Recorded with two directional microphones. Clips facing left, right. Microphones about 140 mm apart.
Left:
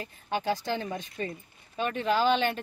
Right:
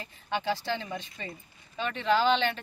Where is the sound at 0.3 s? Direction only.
45° left (ahead or behind).